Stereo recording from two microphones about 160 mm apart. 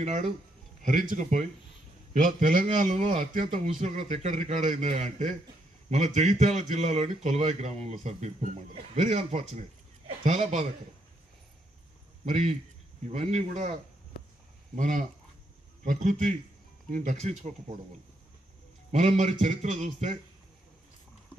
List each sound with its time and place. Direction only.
0.0 s speech: 45° right (ahead or behind)
12.3 s speech: 45° right (ahead or behind)
14.8 s speech: 55° right (ahead or behind)
18.9 s a man's voice: 45° right (ahead or behind)